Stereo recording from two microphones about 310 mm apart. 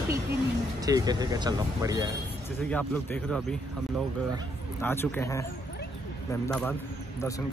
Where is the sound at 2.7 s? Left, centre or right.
Centre.